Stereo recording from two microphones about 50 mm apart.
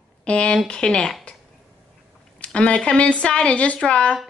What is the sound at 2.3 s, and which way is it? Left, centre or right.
Speech, left.